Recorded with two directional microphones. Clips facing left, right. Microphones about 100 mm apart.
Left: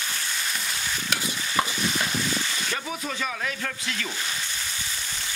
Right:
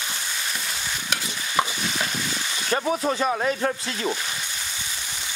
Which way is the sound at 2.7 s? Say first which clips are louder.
Right 8 dB; 40° right (ahead or behind).